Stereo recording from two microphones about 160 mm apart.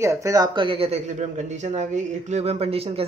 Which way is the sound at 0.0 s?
20° right (ahead or behind).